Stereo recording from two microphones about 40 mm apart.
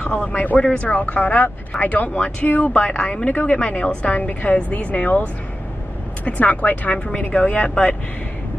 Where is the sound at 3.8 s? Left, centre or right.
Left.